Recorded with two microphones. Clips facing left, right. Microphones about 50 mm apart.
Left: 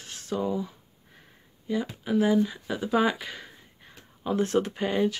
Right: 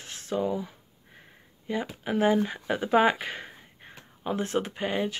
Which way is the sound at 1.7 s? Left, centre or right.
Right.